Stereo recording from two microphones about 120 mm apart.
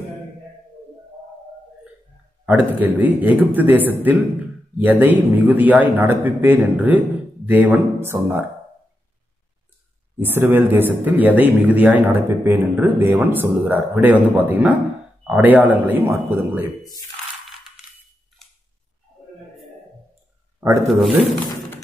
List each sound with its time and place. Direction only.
2.4 s a man's voice: 15° right (ahead or behind)
10.1 s a man's voice: 15° right (ahead or behind)
20.8 s speech: centre (ahead or behind)